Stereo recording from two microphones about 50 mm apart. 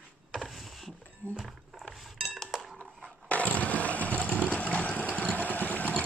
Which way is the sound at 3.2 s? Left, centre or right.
Left.